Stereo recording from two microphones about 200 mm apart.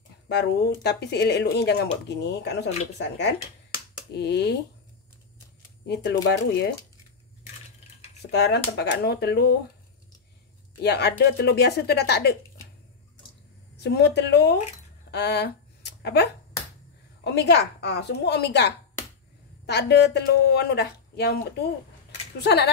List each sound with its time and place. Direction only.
0.3 s speech: 60° left (ahead or behind)
6.2 s speech: 55° left (ahead or behind)
8.3 s speech: 55° left (ahead or behind)
10.8 s speech: 55° left (ahead or behind)
13.7 s speech: 55° left (ahead or behind)
15.0 s a sound: 60° left (ahead or behind)
17.2 s speech: 60° left (ahead or behind)